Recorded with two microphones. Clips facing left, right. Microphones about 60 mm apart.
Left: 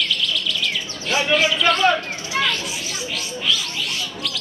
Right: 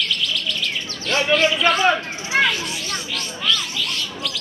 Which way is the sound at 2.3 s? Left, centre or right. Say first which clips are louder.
Right 4 dB; right.